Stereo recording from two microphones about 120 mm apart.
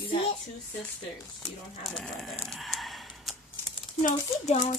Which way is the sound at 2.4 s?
Centre (ahead or behind).